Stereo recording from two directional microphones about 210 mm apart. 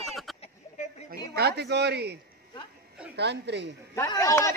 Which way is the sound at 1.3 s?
50° right (ahead or behind).